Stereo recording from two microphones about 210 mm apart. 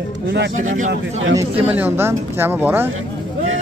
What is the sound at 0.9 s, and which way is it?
Speech, 65° right (ahead or behind).